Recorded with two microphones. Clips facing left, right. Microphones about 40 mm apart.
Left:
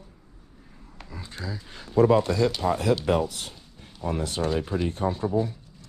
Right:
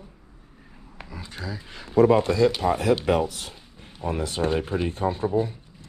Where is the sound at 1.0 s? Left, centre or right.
Right.